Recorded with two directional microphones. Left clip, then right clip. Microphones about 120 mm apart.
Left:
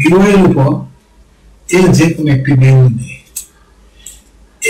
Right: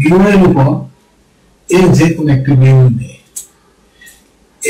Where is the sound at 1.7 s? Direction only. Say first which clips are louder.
Even; centre (ahead or behind).